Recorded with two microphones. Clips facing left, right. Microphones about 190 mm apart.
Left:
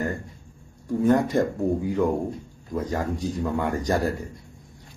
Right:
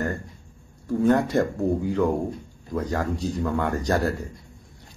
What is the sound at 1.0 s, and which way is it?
A man's voice, 10° left (ahead or behind).